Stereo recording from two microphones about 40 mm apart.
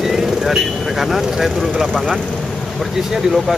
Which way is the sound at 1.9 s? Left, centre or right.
Centre.